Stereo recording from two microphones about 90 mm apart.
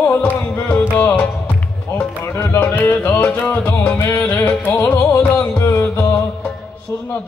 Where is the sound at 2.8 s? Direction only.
20° left (ahead or behind).